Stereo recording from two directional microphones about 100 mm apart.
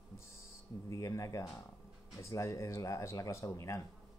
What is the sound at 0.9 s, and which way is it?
Speech, 30° left (ahead or behind).